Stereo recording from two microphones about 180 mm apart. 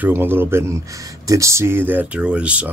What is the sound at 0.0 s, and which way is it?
Speech, 10° right (ahead or behind).